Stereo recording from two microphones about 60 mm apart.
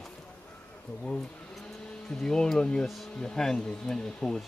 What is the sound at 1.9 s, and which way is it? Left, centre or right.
Speech, centre.